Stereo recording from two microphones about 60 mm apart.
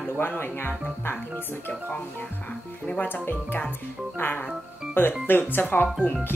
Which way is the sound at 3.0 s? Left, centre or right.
Left.